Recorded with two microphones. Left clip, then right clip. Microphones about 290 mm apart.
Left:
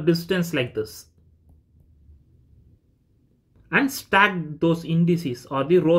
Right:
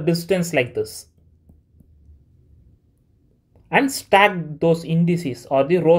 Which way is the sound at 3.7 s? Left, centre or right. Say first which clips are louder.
Right 4 dB; centre.